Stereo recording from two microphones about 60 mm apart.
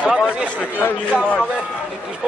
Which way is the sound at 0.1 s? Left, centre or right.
Centre.